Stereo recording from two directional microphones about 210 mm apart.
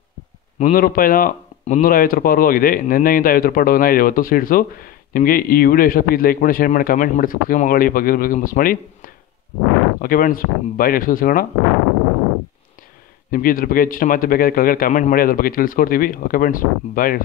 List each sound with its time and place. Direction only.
0.6 s a man's voice: 40° left (ahead or behind)
13.3 s a man's voice: 40° left (ahead or behind)